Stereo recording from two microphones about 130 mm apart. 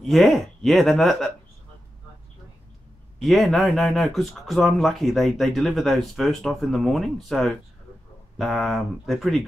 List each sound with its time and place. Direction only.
0.0 s speech: centre (ahead or behind)
3.2 s speech: centre (ahead or behind)